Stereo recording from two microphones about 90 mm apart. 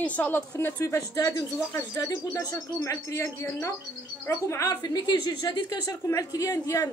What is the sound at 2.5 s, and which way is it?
Speech, 30° left (ahead or behind).